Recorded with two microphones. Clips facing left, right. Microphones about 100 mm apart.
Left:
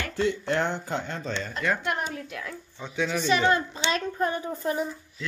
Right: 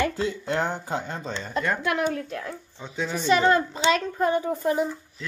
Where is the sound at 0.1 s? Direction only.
35° right (ahead or behind).